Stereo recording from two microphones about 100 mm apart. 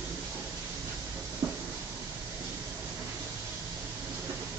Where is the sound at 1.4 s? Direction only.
25° right (ahead or behind).